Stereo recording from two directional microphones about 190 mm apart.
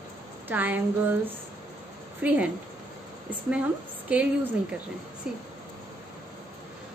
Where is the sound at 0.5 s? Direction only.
10° right (ahead or behind).